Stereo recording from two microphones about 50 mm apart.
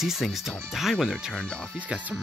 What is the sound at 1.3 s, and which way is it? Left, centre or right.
Speech, left.